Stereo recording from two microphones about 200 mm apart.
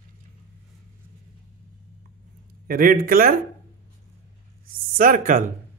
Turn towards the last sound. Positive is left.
turn(degrees=-40)  # may be behind; listen again after turning